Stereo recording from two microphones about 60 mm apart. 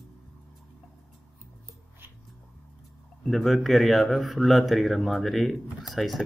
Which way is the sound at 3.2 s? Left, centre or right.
Centre.